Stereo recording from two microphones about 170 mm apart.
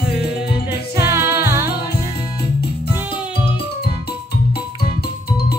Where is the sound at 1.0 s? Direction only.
15° right (ahead or behind).